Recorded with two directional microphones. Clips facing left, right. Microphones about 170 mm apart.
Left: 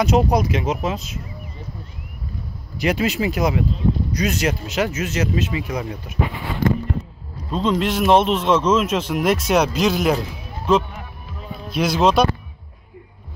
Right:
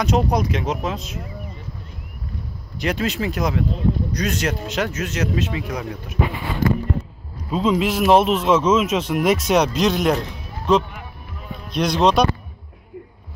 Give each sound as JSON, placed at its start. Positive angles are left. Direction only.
{"t": 0.0, "sound": "a man's voice", "side_deg": 5}
{"t": 2.8, "sound": "a man's voice", "side_deg": 5}
{"t": 7.5, "sound": "a man's voice", "side_deg": -5}